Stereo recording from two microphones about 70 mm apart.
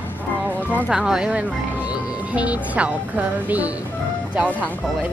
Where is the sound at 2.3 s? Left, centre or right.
Centre.